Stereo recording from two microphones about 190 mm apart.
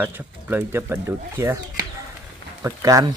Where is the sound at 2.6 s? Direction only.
15° right (ahead or behind).